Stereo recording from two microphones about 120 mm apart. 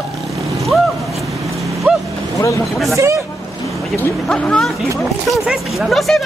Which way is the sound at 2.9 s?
25° right (ahead or behind).